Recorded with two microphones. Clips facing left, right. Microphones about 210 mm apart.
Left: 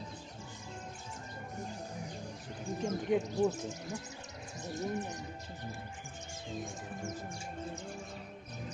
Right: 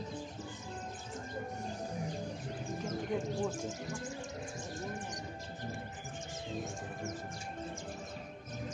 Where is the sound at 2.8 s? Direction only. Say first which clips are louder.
Left 5 dB; 40° left (ahead or behind).